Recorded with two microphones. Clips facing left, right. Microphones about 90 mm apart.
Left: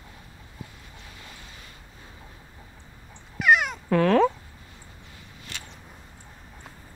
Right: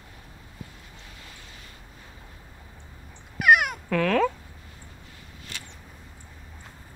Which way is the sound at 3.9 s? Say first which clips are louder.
Left 4 dB; 25° left (ahead or behind).